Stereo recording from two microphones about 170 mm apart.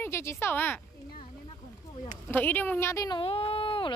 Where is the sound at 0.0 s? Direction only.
15° left (ahead or behind).